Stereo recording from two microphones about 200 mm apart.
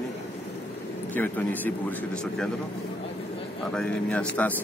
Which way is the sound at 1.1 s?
10° left (ahead or behind).